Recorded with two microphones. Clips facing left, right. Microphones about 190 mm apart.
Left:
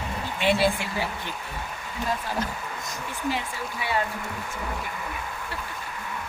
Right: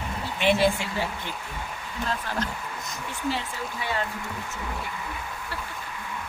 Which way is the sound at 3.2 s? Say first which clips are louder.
Even; 15° left (ahead or behind).